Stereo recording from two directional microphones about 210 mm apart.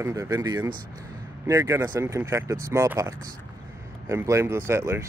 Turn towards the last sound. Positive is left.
turn(degrees=-10)  # may be behind; listen again after turning